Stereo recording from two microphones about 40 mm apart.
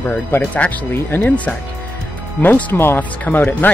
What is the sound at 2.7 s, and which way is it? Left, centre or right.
Speech, left.